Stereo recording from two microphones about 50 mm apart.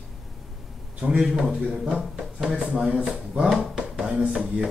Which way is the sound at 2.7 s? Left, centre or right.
Centre.